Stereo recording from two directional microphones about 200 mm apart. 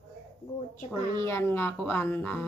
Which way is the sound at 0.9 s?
15° left (ahead or behind).